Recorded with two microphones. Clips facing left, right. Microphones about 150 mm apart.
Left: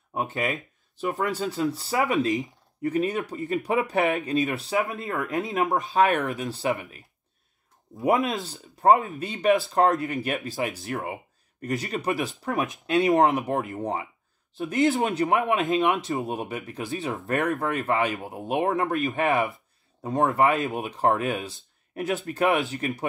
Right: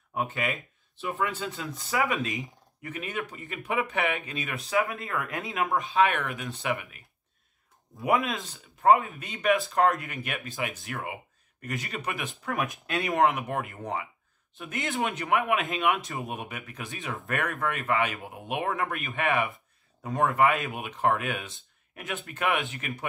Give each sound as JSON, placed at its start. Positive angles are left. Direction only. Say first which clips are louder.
{"t": 0.3, "sound": "speech", "louder": "left 3 dB", "side_deg": 40}
{"t": 5.7, "sound": "speech", "louder": "left 1 dB", "side_deg": 45}
{"t": 8.2, "sound": "speech", "louder": "left 5 dB", "side_deg": 0}
{"t": 8.5, "sound": "speech", "louder": "left 1 dB", "side_deg": 35}
{"t": 12.8, "sound": "speech", "louder": "left 9 dB", "side_deg": 20}
{"t": 13.1, "sound": "speech", "louder": "left 1 dB", "side_deg": 35}
{"t": 14.9, "sound": "speech", "louder": "left 1 dB", "side_deg": 40}